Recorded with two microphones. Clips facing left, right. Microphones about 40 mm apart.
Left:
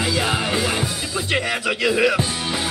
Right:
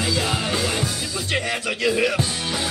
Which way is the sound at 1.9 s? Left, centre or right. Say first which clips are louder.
Left 5 dB; left.